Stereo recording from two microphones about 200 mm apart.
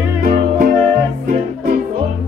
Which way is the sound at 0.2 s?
40° right (ahead or behind).